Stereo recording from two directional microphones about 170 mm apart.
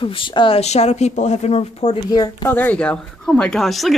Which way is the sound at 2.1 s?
20° left (ahead or behind).